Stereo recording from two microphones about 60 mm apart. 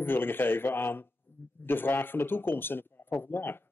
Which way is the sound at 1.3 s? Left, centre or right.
Left.